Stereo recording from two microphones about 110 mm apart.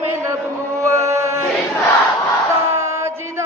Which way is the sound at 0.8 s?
30° right (ahead or behind).